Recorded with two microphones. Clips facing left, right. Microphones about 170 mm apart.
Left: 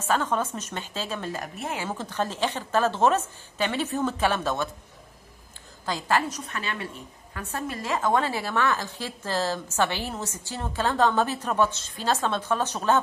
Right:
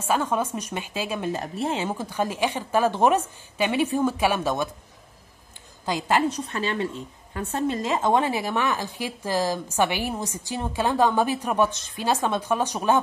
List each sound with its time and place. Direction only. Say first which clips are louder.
0.0 s a woman's voice: right 1 dB; 10° right (ahead or behind)
1.4 s a woman's voice: right 6 dB; 30° right (ahead or behind)
1.9 s a woman's voice: right 3 dB; 10° right (ahead or behind)
5.9 s a woman's voice: right 2 dB; 15° right (ahead or behind)
6.2 s a woman's voice: right 6 dB; 30° right (ahead or behind); by 13.0 s 15° right (ahead or behind)